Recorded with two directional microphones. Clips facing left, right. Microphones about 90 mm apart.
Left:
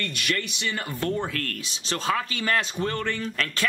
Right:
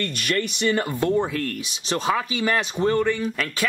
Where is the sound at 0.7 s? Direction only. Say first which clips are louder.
Right 4 dB; 20° right (ahead or behind).